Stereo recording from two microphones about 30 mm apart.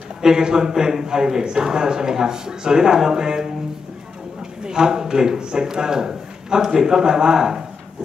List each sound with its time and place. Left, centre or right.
0.2 s a man's voice: right
4.6 s a man's voice: right